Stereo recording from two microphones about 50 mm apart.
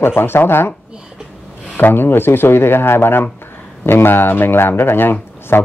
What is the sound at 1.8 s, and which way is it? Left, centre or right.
A man's voice, left.